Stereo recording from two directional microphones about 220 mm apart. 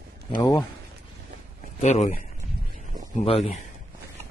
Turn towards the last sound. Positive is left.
turn(degrees=25)  # may be behind; listen again after turning